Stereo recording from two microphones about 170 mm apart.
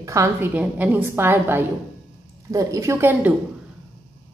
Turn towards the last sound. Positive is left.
turn(degrees=-15)  # may be behind; listen again after turning